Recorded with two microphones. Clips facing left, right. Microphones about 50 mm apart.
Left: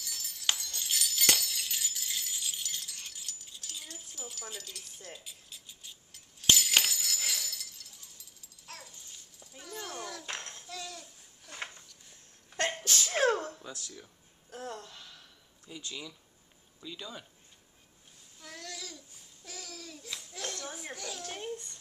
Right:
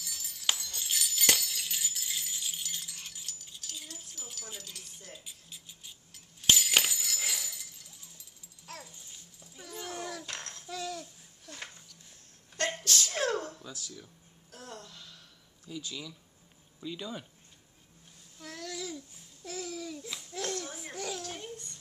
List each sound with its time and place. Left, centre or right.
0.0 s music: centre
3.6 s wind chime: centre
5.2 s a sound: centre
8.6 s dog: centre
9.6 s a sound: centre
10.2 s dishes: left
10.6 s babbling: centre
12.5 s sneeze: left
14.5 s a sound: left
15.7 s speech: centre
16.8 s speech: centre
18.4 s babbling: centre
20.9 s children playing: centre
21.2 s babbling: centre